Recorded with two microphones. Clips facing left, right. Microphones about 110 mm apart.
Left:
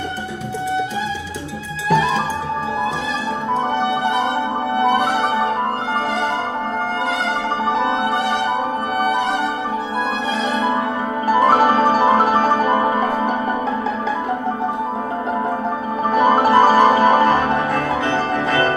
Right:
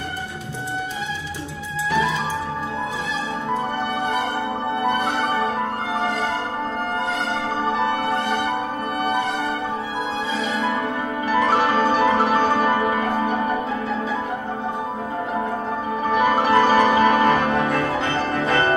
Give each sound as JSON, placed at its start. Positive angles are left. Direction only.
{"t": 4.7, "sound": "music", "side_deg": 75}
{"t": 11.2, "sound": "music", "side_deg": 40}
{"t": 16.2, "sound": "music", "side_deg": 40}